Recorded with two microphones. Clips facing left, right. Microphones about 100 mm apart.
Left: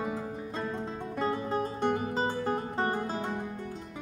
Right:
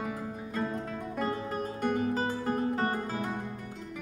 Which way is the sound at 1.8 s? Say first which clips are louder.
Right 3 dB; 25° left (ahead or behind).